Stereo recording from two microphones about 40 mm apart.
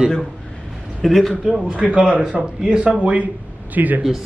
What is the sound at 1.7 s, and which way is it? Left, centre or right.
Speech, right.